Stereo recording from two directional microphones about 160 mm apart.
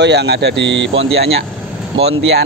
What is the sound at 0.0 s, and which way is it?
Speech, 90° right.